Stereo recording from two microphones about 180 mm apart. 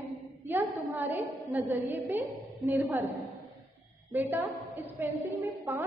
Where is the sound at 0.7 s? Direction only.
10° right (ahead or behind).